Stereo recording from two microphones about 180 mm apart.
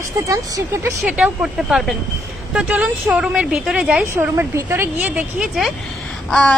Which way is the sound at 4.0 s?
15° right (ahead or behind).